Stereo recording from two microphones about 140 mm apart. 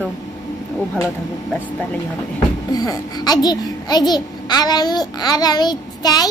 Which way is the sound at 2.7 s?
30° left (ahead or behind).